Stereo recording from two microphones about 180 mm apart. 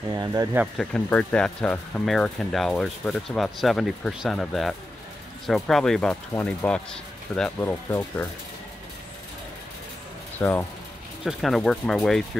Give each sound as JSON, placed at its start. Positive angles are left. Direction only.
{"t": 0.1, "sound": "speech", "side_deg": -20}
{"t": 0.7, "sound": "speech", "side_deg": 5}
{"t": 10.4, "sound": "speech", "side_deg": 10}